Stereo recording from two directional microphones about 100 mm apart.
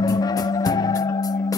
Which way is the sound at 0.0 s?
40° left (ahead or behind).